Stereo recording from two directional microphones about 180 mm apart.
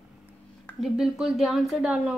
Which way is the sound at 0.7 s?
Centre (ahead or behind).